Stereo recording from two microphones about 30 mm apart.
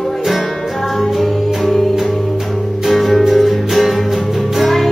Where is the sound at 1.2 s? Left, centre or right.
Centre.